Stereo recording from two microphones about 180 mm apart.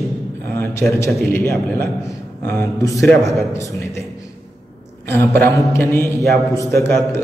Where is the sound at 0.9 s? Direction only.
15° left (ahead or behind).